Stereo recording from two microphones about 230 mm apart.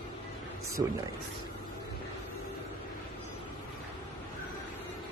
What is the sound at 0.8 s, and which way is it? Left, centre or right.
Speech, centre.